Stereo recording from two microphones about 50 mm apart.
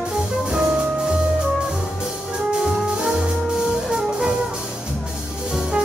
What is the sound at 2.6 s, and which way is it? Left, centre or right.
Music, centre.